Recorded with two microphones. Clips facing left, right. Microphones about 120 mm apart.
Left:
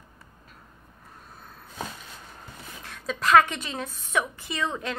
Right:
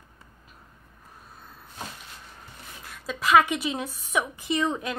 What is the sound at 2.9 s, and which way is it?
A woman's voice, 5° right (ahead or behind).